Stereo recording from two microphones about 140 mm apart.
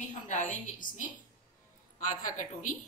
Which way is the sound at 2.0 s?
60° left (ahead or behind).